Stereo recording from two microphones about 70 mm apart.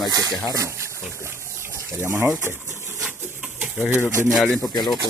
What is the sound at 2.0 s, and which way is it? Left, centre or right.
Speech, right.